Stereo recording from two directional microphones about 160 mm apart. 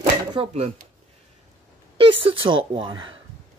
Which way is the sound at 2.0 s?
35° right (ahead or behind).